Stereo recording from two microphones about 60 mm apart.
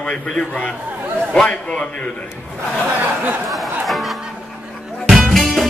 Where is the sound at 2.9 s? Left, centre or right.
Right.